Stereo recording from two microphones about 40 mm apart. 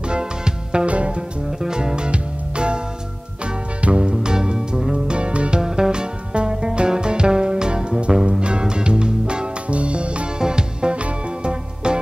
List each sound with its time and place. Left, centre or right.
0.1 s music: right
1.6 s music: centre
3.8 s music: right